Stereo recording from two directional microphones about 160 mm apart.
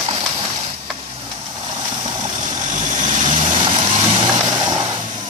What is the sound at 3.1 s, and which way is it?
Vehicle, 45° right (ahead or behind).